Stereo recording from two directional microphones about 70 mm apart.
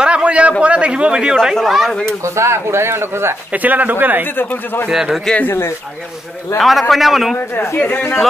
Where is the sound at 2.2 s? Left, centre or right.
Right.